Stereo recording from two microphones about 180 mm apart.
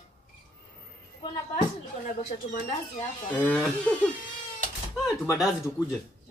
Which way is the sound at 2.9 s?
10° left (ahead or behind).